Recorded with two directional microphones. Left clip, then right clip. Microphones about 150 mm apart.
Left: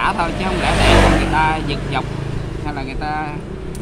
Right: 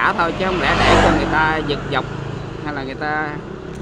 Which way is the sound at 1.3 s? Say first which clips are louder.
Even; 55° left (ahead or behind).